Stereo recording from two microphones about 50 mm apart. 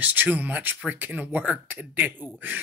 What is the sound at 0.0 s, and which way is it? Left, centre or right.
Speech, right.